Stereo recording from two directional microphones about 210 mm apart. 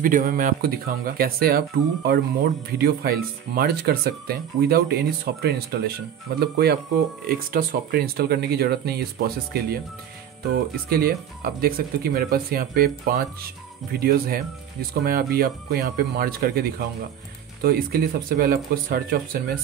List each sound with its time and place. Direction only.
0.0 s speech: 40° right (ahead or behind)
13.9 s speech: 45° right (ahead or behind)